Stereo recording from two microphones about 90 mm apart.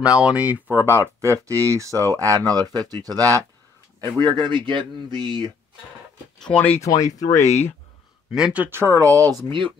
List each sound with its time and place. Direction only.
0.2 s speech: 15° right (ahead or behind); by 3.4 s 40° right (ahead or behind)
4.2 s speech: 55° right (ahead or behind)
6.4 s speech: 15° left (ahead or behind)
6.8 s speech: 40° left (ahead or behind)
8.3 s speech: 5° right (ahead or behind)
8.5 s speech: 25° right (ahead or behind)
8.9 s speech: 40° right (ahead or behind)